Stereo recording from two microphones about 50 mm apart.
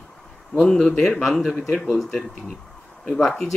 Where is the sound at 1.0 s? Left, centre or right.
Centre.